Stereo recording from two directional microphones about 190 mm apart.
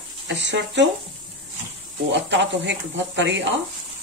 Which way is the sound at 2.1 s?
70° right (ahead or behind).